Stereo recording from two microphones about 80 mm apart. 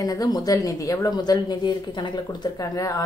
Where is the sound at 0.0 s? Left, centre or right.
Left.